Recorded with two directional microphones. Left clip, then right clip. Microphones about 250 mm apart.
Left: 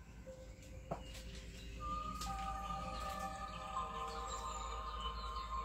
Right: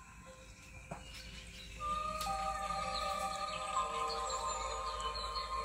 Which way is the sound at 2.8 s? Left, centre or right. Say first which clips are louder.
Right 7 dB; right.